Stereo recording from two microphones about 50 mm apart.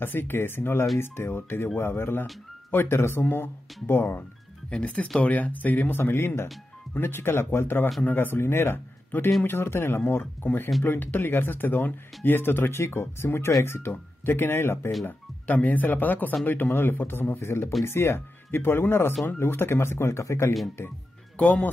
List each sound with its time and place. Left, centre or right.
0.0 s speech: left
5.2 s speech: left
8.5 s speech: left
8.7 s a man's voice: left
11.0 s speech: left
15.0 s speech: left
17.4 s speech: left
21.4 s speech: left